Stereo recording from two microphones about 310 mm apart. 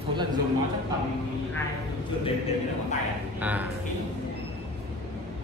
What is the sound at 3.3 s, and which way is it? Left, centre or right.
Speech, centre.